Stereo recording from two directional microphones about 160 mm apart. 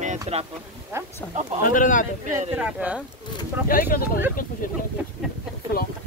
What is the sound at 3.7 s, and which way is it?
Speech, 65° left (ahead or behind).